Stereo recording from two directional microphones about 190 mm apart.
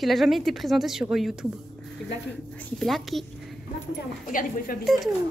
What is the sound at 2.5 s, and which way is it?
Speech, 5° left (ahead or behind).